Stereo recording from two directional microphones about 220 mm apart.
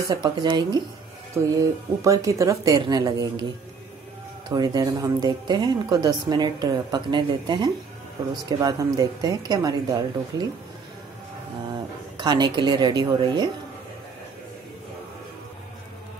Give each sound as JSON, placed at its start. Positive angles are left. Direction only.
{"t": 0.1, "sound": "speech", "side_deg": -20}
{"t": 4.5, "sound": "speech", "side_deg": -15}
{"t": 12.2, "sound": "speech", "side_deg": -20}